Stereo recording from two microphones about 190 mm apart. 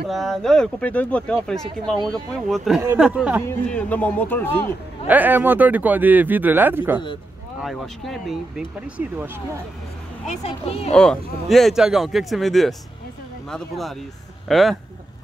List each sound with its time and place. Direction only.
0.0 s speech: centre (ahead or behind)
3.4 s speech: 5° left (ahead or behind)
5.0 s speech: 10° right (ahead or behind)
7.6 s speech: centre (ahead or behind)
10.2 s speech: 35° left (ahead or behind)
10.9 s speech: 5° left (ahead or behind)